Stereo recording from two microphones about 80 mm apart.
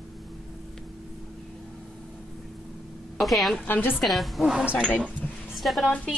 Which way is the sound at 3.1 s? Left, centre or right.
Centre.